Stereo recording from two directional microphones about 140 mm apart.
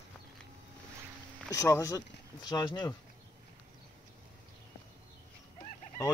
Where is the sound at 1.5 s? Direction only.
20° left (ahead or behind).